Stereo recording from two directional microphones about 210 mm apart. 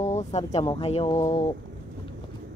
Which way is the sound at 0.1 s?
35° left (ahead or behind).